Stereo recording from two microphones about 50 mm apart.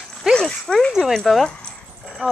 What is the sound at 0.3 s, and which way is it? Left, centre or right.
Dog, centre.